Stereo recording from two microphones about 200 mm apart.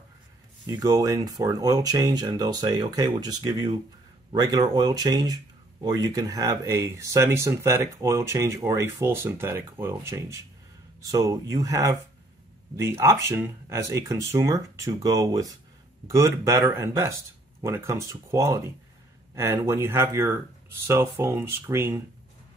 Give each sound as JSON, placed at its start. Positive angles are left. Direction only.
{"t": 0.7, "sound": "speech", "side_deg": -15}